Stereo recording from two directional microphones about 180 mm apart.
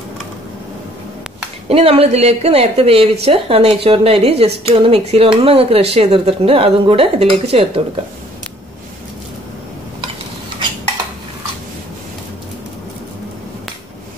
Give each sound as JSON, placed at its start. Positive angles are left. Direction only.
{"t": 1.7, "sound": "speech", "side_deg": -35}